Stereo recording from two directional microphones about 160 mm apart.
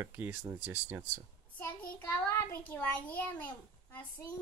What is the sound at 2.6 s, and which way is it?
A child's voice, 10° left (ahead or behind).